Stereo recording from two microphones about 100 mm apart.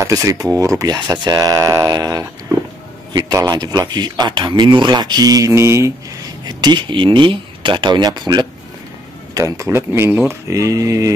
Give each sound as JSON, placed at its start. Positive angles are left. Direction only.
{"t": 0.0, "sound": "speech", "side_deg": -35}
{"t": 6.4, "sound": "speech", "side_deg": -45}
{"t": 9.3, "sound": "speech", "side_deg": -30}